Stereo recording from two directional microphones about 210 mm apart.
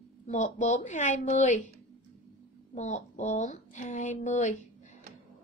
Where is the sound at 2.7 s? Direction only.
35° left (ahead or behind).